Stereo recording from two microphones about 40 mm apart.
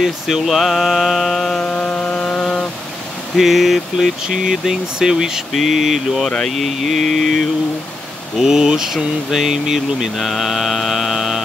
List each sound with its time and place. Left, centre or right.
0.0 s speech: centre
1.6 s chainsaw: left
3.3 s speech: centre
4.5 s speech: centre
5.5 s speech: centre
8.4 s speech: centre